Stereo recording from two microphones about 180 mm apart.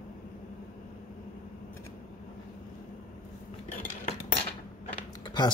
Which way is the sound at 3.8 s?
35° left (ahead or behind).